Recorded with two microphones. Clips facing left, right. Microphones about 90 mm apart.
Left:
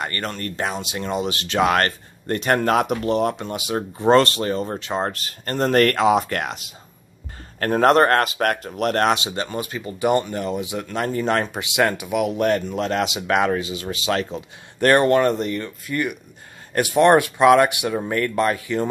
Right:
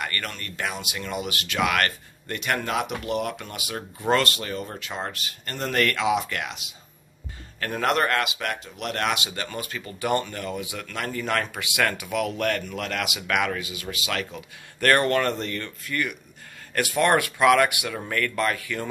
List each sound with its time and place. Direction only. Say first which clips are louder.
0.0 s speech: left 5 dB; 30° left (ahead or behind)